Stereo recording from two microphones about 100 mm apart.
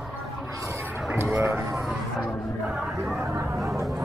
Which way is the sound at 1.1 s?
25° right (ahead or behind).